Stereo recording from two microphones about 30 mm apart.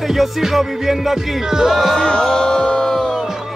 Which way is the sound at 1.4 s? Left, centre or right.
Centre.